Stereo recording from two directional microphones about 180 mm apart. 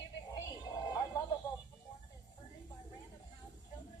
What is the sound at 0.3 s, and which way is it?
Music, 25° left (ahead or behind).